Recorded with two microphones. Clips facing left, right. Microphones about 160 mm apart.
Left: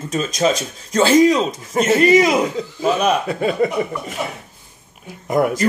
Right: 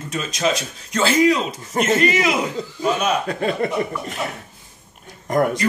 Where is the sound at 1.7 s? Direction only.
5° left (ahead or behind).